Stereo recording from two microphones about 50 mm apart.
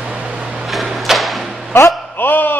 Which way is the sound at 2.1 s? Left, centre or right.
Left.